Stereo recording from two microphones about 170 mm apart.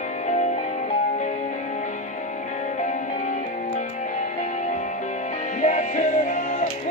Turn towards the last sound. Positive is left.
turn(degrees=50)  # may be behind; listen again after turning